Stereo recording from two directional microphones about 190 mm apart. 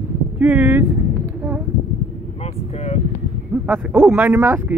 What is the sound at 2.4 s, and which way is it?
Speech, 35° left (ahead or behind).